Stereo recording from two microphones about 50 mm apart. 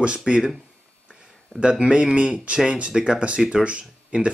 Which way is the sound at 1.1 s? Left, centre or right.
Centre.